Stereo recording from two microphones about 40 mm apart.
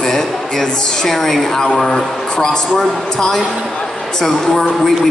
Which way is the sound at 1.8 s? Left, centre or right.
Centre.